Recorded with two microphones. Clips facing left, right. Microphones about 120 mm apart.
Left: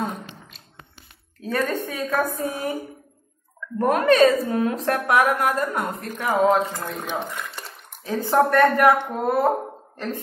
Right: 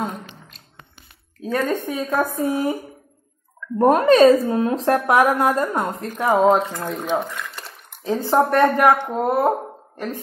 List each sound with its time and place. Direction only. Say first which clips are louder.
1.4 s a woman's voice: right 2 dB; 20° right (ahead or behind)
3.7 s a woman's voice: right 4 dB; 30° right (ahead or behind)
6.6 s speech: right 2 dB; centre (ahead or behind)
7.2 s stir: right 3 dB; centre (ahead or behind)
8.0 s a woman's voice: right 1 dB; 20° right (ahead or behind)